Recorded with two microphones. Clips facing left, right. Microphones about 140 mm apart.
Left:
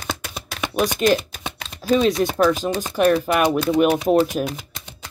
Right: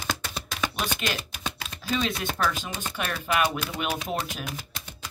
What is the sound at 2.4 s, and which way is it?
Speech, 35° left (ahead or behind).